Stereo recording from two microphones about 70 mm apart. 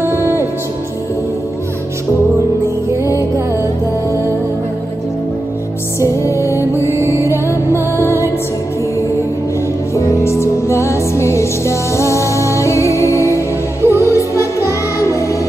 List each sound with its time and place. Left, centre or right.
0.0 s music: right
5.9 s music: left
7.0 s music: right
7.2 s music: left
9.9 s music: left